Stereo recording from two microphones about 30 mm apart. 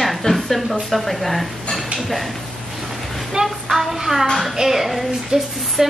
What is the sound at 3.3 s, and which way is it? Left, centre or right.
Music, centre.